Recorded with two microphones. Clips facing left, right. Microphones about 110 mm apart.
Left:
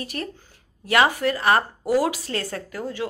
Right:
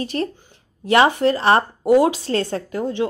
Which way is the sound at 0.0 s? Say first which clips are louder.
Right 8 dB; 30° right (ahead or behind).